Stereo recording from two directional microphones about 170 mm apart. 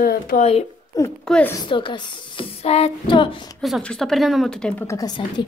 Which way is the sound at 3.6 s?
Centre (ahead or behind).